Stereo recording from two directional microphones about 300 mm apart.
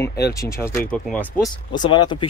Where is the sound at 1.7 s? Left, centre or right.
Centre.